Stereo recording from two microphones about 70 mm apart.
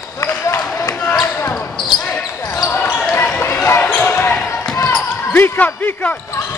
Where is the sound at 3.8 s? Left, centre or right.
Centre.